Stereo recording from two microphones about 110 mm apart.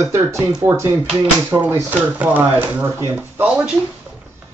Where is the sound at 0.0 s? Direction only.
25° right (ahead or behind).